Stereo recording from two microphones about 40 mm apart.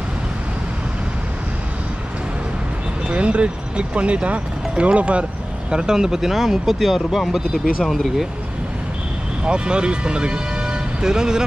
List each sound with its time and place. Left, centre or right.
3.1 s speech: right
5.7 s speech: centre
9.4 s speech: right